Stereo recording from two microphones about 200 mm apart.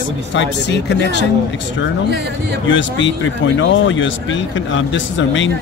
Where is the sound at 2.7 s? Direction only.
70° left (ahead or behind).